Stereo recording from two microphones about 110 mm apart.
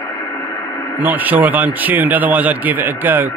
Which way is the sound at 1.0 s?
15° right (ahead or behind).